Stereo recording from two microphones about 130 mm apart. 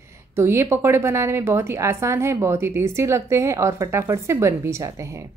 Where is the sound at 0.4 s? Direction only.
20° right (ahead or behind).